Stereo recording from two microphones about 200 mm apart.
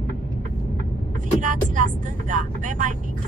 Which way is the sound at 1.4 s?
40° right (ahead or behind).